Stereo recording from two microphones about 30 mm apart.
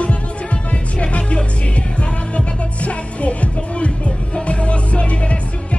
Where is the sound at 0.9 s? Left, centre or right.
Left.